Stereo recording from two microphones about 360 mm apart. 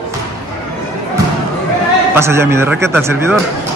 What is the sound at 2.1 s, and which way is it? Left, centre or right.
Speech, centre.